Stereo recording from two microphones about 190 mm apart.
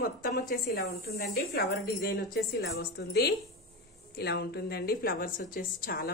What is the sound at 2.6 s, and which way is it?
A woman's voice, 60° left (ahead or behind).